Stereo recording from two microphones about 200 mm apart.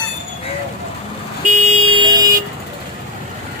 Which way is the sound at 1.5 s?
35° right (ahead or behind).